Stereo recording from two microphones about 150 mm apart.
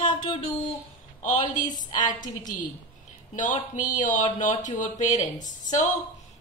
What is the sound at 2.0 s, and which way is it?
Speech, 60° left (ahead or behind).